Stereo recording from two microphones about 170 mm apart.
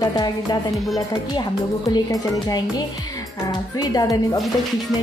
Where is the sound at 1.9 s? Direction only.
20° left (ahead or behind).